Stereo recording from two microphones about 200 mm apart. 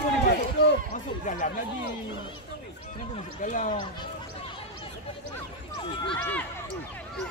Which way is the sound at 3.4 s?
40° left (ahead or behind).